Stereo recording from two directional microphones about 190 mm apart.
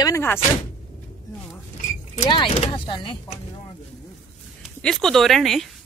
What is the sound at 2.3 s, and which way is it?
Speech, 30° left (ahead or behind).